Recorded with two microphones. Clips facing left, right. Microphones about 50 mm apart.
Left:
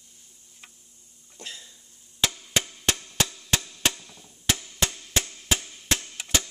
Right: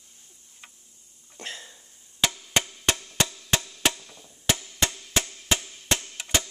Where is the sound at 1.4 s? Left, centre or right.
Right.